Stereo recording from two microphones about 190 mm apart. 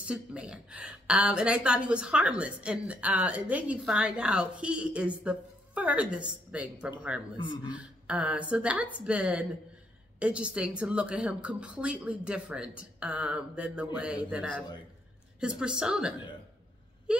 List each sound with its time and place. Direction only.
0.0 s a woman's voice: 5° right (ahead or behind)
7.3 s a man's voice: 25° left (ahead or behind)
7.7 s a woman's voice: 5° right (ahead or behind)
15.4 s a woman's voice: 5° right (ahead or behind)